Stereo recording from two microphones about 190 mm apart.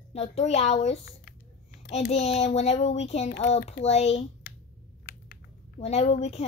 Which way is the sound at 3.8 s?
35° left (ahead or behind).